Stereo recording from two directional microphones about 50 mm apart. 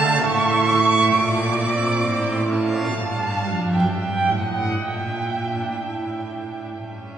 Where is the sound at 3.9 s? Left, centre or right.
Centre.